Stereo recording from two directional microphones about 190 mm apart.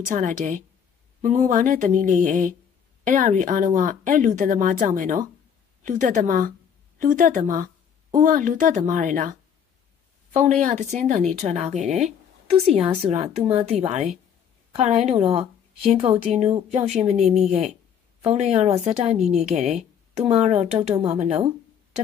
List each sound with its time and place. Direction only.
0.0 s a woman's voice: 40° right (ahead or behind)